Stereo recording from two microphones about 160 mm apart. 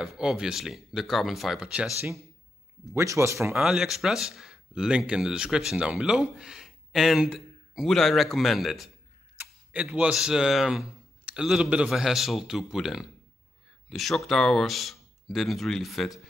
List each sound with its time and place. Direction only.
0.0 s speech: centre (ahead or behind)
2.9 s speech: 15° right (ahead or behind)
3.5 s speech: 5° right (ahead or behind)